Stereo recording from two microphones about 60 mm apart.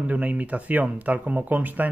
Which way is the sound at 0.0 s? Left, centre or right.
Right.